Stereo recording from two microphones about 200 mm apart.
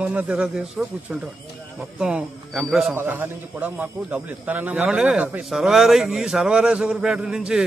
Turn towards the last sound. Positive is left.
turn(degrees=-5)  # may be behind; listen again after turning